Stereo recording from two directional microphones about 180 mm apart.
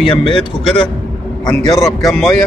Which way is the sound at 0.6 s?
30° left (ahead or behind).